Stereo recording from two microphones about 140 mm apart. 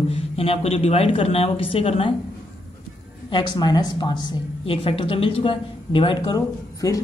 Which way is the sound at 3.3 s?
35° left (ahead or behind).